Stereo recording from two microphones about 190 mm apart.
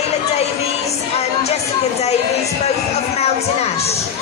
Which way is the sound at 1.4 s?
35° left (ahead or behind).